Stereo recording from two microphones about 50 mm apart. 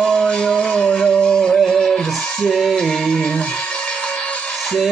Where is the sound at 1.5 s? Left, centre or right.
Centre.